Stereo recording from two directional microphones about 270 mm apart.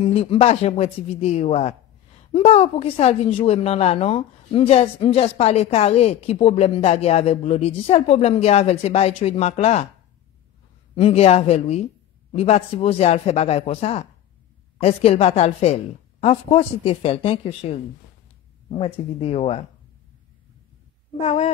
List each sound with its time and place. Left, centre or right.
0.0 s a woman's voice: left
11.0 s a woman's voice: left
21.2 s a woman's voice: left